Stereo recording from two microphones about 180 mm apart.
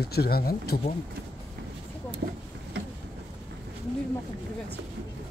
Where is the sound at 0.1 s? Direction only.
60° left (ahead or behind).